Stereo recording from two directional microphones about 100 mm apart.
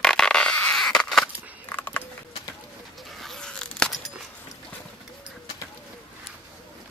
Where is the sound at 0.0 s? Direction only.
5° left (ahead or behind).